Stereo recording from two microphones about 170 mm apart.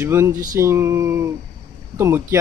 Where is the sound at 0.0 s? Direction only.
15° right (ahead or behind).